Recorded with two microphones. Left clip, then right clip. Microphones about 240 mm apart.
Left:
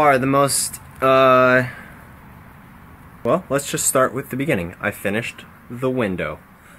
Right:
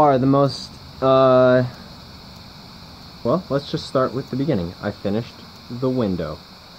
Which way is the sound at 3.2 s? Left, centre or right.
Left.